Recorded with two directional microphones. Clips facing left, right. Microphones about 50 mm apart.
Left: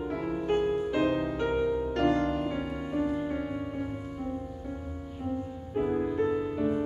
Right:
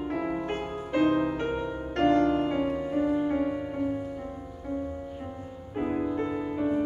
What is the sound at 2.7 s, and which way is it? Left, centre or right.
Music, centre.